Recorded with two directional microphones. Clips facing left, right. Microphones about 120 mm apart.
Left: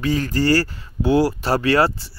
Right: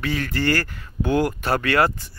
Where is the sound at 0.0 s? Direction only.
35° left (ahead or behind).